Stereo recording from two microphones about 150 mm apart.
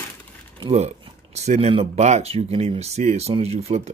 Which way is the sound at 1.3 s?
45° right (ahead or behind).